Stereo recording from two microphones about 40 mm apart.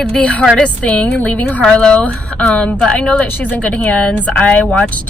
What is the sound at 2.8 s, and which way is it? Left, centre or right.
Speech, left.